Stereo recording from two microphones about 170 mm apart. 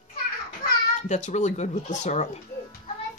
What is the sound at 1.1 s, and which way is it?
Speech, 45° left (ahead or behind).